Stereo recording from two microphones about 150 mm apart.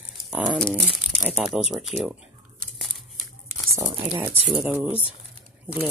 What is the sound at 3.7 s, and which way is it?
Speech, 25° right (ahead or behind).